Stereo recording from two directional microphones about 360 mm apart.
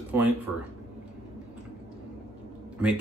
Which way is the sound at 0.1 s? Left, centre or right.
Centre.